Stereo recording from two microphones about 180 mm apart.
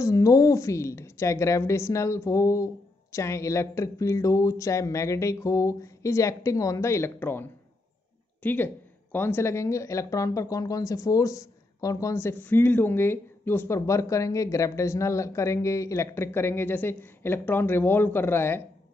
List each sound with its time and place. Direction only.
0.0 s speech: 20° left (ahead or behind)